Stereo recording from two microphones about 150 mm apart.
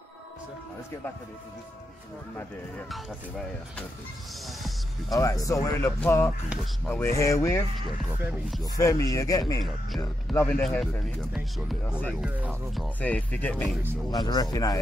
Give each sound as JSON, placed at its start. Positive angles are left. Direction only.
{"t": 2.9, "sound": "speech", "side_deg": 5}
{"t": 5.1, "sound": "speech", "side_deg": 20}
{"t": 8.7, "sound": "speech", "side_deg": 20}
{"t": 10.3, "sound": "speech", "side_deg": 10}
{"t": 12.3, "sound": "speech", "side_deg": -10}
{"t": 13.0, "sound": "speech", "side_deg": 10}
{"t": 14.2, "sound": "speech", "side_deg": 25}